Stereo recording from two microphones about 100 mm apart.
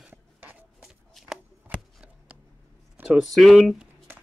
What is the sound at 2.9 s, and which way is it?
Speech, 10° right (ahead or behind).